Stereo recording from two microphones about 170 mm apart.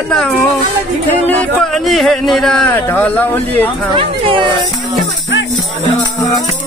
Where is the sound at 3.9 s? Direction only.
30° right (ahead or behind).